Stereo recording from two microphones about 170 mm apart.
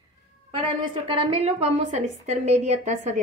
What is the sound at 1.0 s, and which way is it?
A woman's voice, 30° right (ahead or behind).